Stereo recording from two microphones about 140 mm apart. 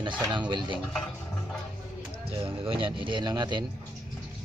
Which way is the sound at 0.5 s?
35° right (ahead or behind).